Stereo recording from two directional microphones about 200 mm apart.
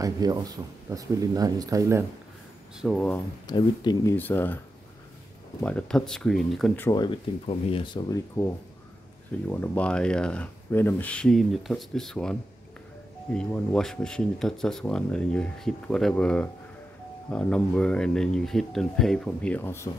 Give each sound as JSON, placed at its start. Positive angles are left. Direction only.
{"t": 0.0, "sound": "speech", "side_deg": -20}
{"t": 2.8, "sound": "speech", "side_deg": 5}
{"t": 3.4, "sound": "speech", "side_deg": 20}
{"t": 5.6, "sound": "speech", "side_deg": 5}
{"t": 6.9, "sound": "speech", "side_deg": 25}
{"t": 9.5, "sound": "speech", "side_deg": 10}